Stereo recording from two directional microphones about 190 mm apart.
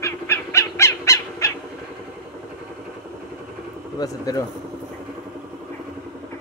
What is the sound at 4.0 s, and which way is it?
Speech, 20° left (ahead or behind).